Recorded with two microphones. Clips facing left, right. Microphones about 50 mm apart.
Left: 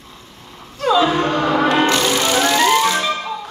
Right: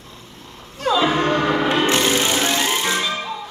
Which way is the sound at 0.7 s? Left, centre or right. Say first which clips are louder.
Left 3 dB; centre.